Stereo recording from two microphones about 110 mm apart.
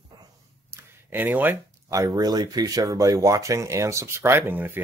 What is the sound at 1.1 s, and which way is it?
Speech, 15° right (ahead or behind).